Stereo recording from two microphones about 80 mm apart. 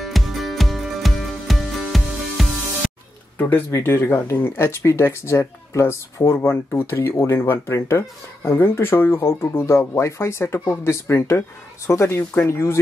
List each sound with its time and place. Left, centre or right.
0.0 s music: centre
3.3 s speech: left